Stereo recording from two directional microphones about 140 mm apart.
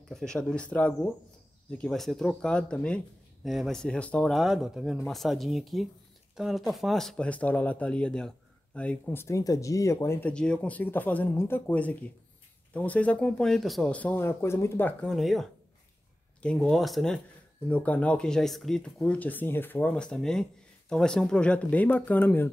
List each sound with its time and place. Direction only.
0.1 s speech: 5° left (ahead or behind); by 10.1 s 20° left (ahead or behind)
10.2 s speech: 5° left (ahead or behind)
16.4 s speech: 5° left (ahead or behind)